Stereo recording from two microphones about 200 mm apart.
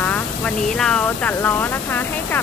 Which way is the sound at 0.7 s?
5° left (ahead or behind).